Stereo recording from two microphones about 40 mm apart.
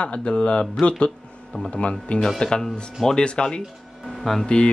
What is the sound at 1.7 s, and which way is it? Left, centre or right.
Speech, left.